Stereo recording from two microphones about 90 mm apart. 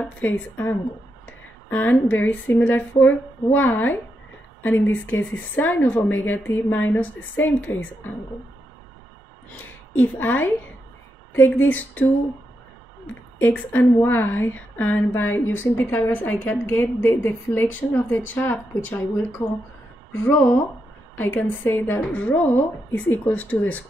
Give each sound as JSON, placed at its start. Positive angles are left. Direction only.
{"t": 0.0, "sound": "a woman's voice", "side_deg": 20}
{"t": 9.6, "sound": "a woman's voice", "side_deg": 20}
{"t": 13.4, "sound": "a woman's voice", "side_deg": 25}
{"t": 21.2, "sound": "a woman's voice", "side_deg": 20}